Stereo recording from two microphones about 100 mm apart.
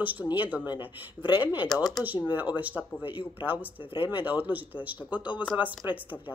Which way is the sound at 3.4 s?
20° right (ahead or behind).